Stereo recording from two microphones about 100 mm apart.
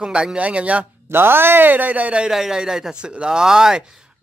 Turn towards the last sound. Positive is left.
turn(degrees=-5)  # may be behind; listen again after turning